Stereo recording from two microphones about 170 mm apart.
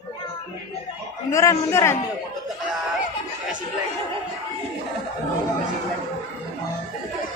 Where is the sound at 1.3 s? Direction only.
15° left (ahead or behind).